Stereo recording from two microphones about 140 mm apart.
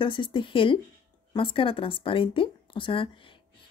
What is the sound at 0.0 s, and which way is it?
Speech, 35° left (ahead or behind).